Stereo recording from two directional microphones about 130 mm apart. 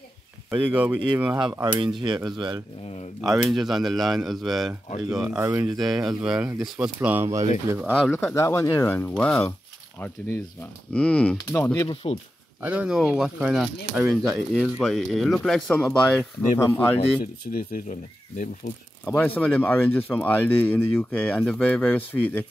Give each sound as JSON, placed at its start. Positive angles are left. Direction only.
{"t": 0.5, "sound": "speech", "side_deg": -10}
{"t": 1.4, "sound": "speech", "side_deg": -40}
{"t": 3.2, "sound": "speech", "side_deg": 0}
{"t": 5.4, "sound": "speech", "side_deg": -20}
{"t": 6.0, "sound": "speech", "side_deg": -5}
{"t": 8.1, "sound": "speech", "side_deg": 15}
{"t": 9.9, "sound": "speech", "side_deg": 15}
{"t": 12.6, "sound": "speech", "side_deg": -10}
{"t": 17.4, "sound": "speech", "side_deg": 60}
{"t": 19.0, "sound": "speech", "side_deg": 15}